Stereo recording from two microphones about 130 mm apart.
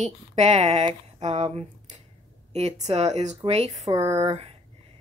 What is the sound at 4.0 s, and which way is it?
Speech, 25° right (ahead or behind).